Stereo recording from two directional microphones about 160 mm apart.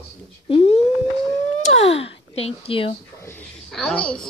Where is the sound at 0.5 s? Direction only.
40° left (ahead or behind).